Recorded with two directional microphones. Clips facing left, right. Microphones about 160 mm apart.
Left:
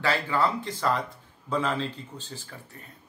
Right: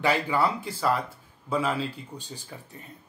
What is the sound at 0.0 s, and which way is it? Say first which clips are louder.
Speech: right 1 dB; 15° right (ahead or behind).